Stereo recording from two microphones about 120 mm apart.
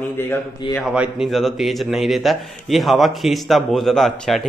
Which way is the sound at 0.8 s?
5° right (ahead or behind).